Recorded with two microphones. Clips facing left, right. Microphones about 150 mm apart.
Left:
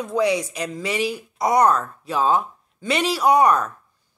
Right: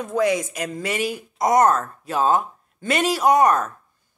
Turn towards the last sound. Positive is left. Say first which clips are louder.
# even
turn(degrees=-45)  # may be behind; listen again after turning